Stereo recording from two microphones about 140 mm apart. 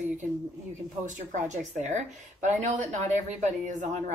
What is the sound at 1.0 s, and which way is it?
Speech, 60° right (ahead or behind).